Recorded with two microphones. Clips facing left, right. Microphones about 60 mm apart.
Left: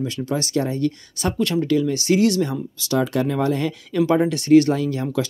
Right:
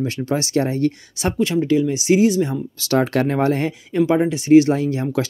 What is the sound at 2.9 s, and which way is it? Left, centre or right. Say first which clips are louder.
Speech: right 3 dB; right.